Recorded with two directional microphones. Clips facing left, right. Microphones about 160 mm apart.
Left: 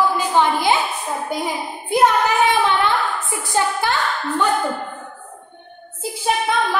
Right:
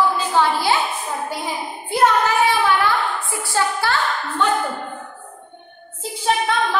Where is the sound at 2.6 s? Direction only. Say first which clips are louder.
Even; 20° left (ahead or behind).